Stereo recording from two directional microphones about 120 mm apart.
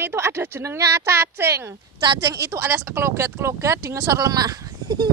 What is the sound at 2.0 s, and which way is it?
Speech, 35° right (ahead or behind).